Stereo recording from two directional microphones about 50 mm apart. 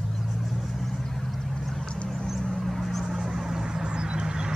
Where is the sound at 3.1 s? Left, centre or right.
Centre.